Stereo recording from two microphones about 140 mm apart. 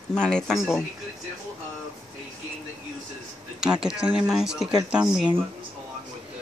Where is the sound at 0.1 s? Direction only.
5° left (ahead or behind).